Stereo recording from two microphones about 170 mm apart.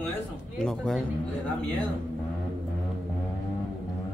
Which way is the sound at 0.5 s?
5° left (ahead or behind).